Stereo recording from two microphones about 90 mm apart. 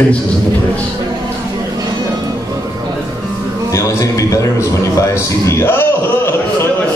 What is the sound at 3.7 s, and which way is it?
A man's voice, 40° left (ahead or behind).